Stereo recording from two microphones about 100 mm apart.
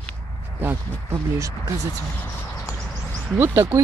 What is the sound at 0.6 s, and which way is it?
Speech, 20° right (ahead or behind).